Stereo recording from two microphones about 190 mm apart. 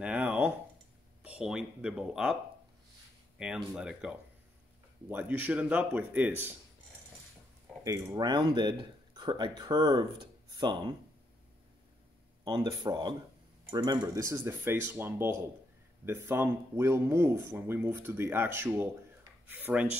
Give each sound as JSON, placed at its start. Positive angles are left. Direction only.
{"t": 0.0, "sound": "a sound", "side_deg": -5}
{"t": 1.2, "sound": "speech", "side_deg": -5}
{"t": 3.3, "sound": "speech", "side_deg": -5}
{"t": 7.8, "sound": "speech", "side_deg": -15}
{"t": 12.4, "sound": "speech", "side_deg": -20}